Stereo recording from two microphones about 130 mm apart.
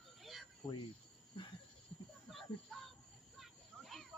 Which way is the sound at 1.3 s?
40° left (ahead or behind).